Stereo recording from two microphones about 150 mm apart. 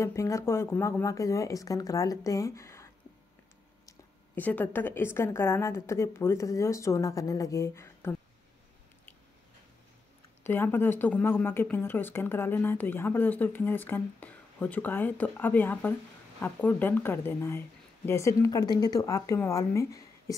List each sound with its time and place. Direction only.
0.0 s speech: 20° left (ahead or behind)
4.4 s speech: 10° left (ahead or behind)
10.4 s speech: 15° left (ahead or behind)